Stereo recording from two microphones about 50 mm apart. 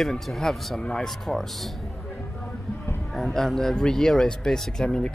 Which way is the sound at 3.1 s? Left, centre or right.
Centre.